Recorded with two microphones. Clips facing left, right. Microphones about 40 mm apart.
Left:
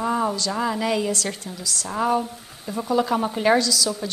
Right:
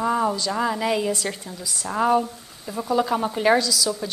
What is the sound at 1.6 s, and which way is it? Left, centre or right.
Speech, centre.